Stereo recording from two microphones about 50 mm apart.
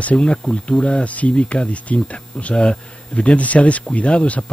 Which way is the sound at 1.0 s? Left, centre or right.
Left.